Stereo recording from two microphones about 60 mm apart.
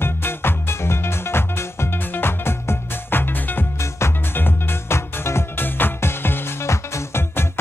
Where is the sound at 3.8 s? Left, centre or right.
Left.